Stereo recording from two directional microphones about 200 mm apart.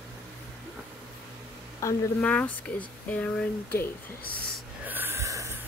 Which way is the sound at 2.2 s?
5° left (ahead or behind).